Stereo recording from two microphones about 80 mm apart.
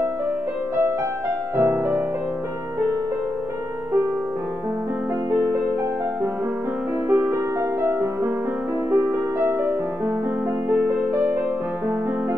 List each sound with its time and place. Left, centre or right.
1.6 s music: right
7.1 s music: right
11.1 s music: right